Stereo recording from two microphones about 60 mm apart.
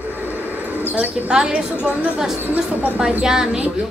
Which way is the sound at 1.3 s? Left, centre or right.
Centre.